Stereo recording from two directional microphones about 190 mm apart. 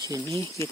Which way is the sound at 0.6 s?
15° left (ahead or behind).